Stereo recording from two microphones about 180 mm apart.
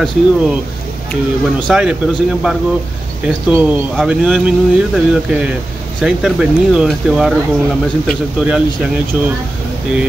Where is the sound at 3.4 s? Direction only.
5° right (ahead or behind).